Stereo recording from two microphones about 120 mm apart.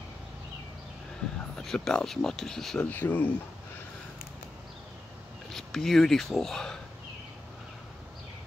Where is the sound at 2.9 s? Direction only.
15° left (ahead or behind).